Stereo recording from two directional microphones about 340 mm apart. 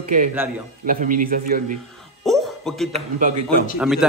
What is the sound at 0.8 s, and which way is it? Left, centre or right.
Speech, right.